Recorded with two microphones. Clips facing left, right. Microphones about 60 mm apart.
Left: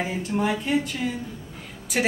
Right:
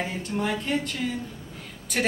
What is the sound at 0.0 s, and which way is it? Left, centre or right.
Speech, centre.